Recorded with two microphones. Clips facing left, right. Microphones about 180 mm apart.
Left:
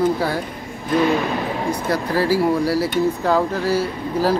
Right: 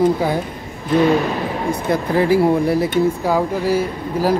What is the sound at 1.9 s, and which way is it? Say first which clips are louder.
Speech: right 4 dB; 20° right (ahead or behind).